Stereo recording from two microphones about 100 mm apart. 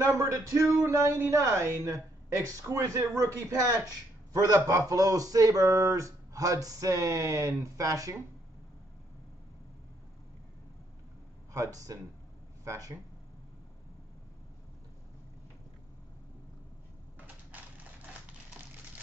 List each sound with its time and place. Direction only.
0.0 s a man's voice: 30° right (ahead or behind)
11.5 s a man's voice: 35° right (ahead or behind)
17.5 s typewriter: 15° right (ahead or behind)